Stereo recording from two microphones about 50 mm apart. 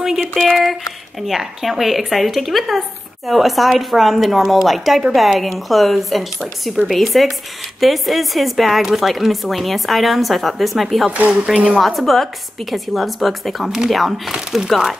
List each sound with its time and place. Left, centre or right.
0.2 s speech: centre
1.2 s speech: centre